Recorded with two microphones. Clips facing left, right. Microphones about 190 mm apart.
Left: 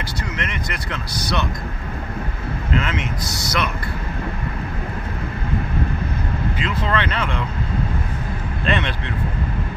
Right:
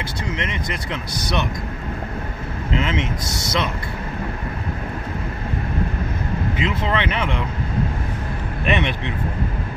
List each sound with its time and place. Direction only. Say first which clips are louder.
0.4 s speech: right 1 dB; 20° right (ahead or behind)
2.7 s speech: right 1 dB; 20° right (ahead or behind)
6.6 s speech: even; 20° right (ahead or behind)
8.6 s speech: right 2 dB; 20° right (ahead or behind)